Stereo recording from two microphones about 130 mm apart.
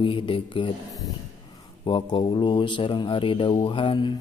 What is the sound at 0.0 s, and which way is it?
Speech, 40° left (ahead or behind).